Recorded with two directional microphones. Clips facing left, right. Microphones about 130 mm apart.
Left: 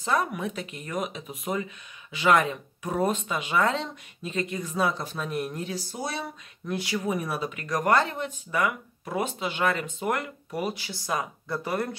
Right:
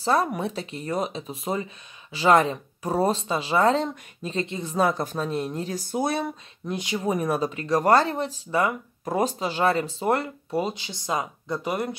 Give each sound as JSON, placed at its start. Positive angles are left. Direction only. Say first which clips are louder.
{"t": 0.0, "sound": "speech", "louder": "right 4 dB", "side_deg": -35}
{"t": 4.7, "sound": "speech", "louder": "right 5 dB", "side_deg": -45}
{"t": 5.2, "sound": "speech", "louder": "even", "side_deg": -25}
{"t": 5.7, "sound": "speech", "louder": "right 7 dB", "side_deg": -55}
{"t": 6.7, "sound": "speech", "louder": "right 1 dB", "side_deg": -20}
{"t": 7.1, "sound": "speech", "louder": "right 7 dB", "side_deg": -40}
{"t": 7.5, "sound": "speech", "louder": "right 3 dB", "side_deg": -30}